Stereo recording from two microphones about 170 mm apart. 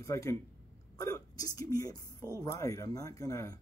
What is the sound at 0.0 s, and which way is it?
Speech, 15° left (ahead or behind).